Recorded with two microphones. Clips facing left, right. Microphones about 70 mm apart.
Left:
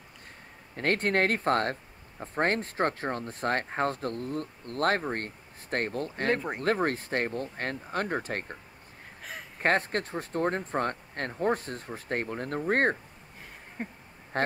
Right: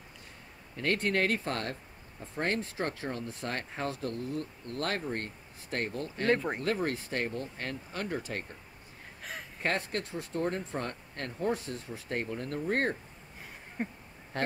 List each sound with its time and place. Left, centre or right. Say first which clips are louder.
0.7 s speech: left 3 dB; left
9.6 s speech: left 6 dB; left
13.8 s speech: right 2 dB; centre
14.3 s speech: left 4 dB; left